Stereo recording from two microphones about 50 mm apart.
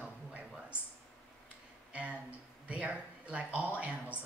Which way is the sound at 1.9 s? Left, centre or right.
Right.